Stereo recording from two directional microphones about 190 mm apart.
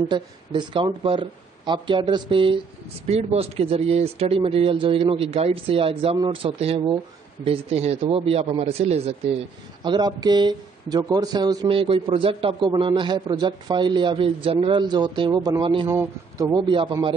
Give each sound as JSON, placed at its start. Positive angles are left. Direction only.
{"t": 0.1, "sound": "speech", "side_deg": -25}
{"t": 9.8, "sound": "speech", "side_deg": -20}
{"t": 15.9, "sound": "speech", "side_deg": -15}